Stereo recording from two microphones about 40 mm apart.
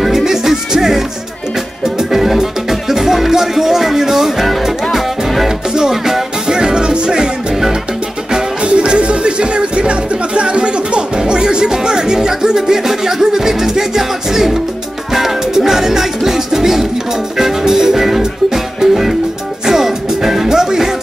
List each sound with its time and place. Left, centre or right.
0.0 s music: centre
5.8 s music: centre
8.3 s music: right